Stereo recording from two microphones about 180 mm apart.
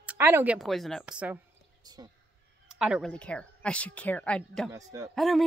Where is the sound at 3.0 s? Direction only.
5° left (ahead or behind).